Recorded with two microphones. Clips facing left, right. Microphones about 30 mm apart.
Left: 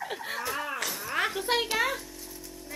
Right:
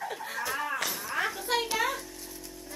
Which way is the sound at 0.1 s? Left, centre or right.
Left.